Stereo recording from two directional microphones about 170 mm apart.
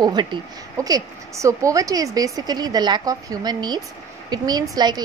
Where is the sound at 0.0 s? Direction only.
25° right (ahead or behind).